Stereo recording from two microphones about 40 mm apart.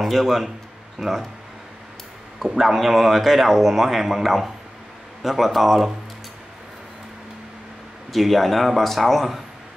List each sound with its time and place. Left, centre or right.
0.0 s speech: centre
2.4 s speech: centre
8.1 s speech: centre